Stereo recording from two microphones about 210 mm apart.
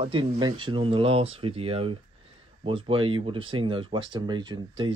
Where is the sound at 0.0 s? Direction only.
25° right (ahead or behind).